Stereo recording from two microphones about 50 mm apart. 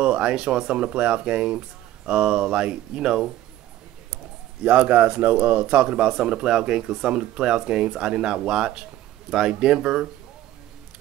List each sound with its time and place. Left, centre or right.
0.0 s a man's voice: centre
4.6 s a man's voice: right; by 10.0 s centre